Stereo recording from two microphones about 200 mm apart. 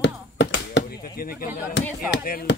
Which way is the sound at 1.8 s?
60° left (ahead or behind).